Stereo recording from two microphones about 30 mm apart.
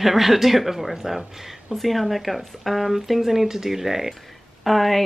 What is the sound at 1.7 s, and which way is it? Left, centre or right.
A woman's voice, centre.